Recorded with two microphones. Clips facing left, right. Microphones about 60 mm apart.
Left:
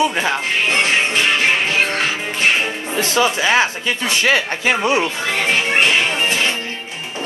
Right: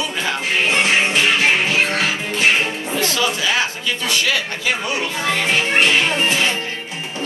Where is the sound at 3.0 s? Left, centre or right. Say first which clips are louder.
Left 4 dB; left.